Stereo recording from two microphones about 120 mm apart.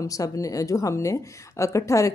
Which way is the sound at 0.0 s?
30° left (ahead or behind).